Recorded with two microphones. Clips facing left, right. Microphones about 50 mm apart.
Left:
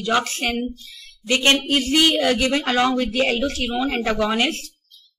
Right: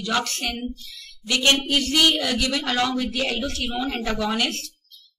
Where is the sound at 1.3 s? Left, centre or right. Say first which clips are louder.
Left 2 dB; left.